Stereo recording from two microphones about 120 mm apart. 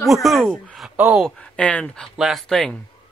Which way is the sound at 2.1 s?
Centre (ahead or behind).